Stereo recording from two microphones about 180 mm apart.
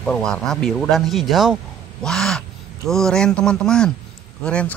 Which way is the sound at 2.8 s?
5° left (ahead or behind).